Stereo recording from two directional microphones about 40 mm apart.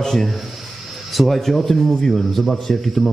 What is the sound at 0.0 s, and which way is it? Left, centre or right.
Speech, centre.